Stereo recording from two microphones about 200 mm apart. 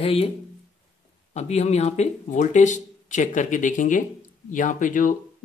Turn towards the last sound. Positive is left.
turn(degrees=40)  # may be behind; listen again after turning